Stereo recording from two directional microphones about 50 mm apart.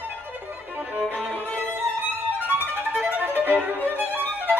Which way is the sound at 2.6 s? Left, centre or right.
Right.